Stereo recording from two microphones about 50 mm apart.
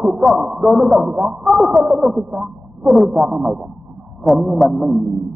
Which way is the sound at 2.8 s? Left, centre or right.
Centre.